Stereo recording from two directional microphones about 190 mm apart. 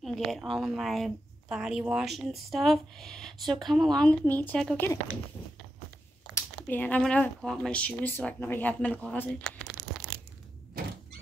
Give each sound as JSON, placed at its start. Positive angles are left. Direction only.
{"t": 0.0, "sound": "a woman's voice", "side_deg": 0}
{"t": 6.3, "sound": "speech", "side_deg": 10}
{"t": 10.1, "sound": "crunch", "side_deg": -25}